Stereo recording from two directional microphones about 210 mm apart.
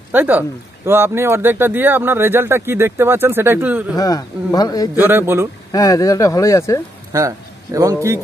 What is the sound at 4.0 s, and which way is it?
Speech, 20° left (ahead or behind).